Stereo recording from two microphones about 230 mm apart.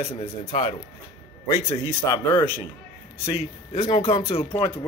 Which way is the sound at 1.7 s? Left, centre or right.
Left.